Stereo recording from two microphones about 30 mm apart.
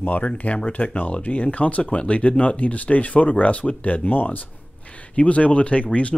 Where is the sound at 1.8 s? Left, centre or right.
Left.